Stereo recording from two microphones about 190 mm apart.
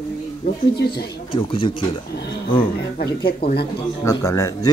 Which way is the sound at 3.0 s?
55° left (ahead or behind).